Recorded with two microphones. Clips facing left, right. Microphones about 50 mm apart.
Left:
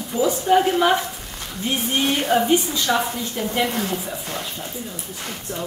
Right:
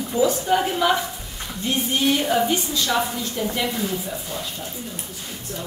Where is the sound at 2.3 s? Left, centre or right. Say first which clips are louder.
Left 3 dB; centre.